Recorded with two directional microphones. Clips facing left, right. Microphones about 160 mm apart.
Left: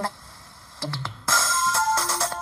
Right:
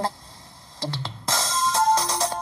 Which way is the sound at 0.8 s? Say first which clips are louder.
Right 1 dB; 20° right (ahead or behind).